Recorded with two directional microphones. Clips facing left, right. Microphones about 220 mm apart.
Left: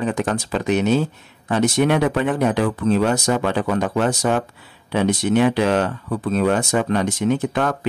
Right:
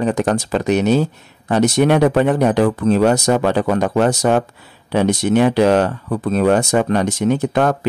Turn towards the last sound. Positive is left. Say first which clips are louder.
# right 5 dB
turn(degrees=-40)  # may be behind; listen again after turning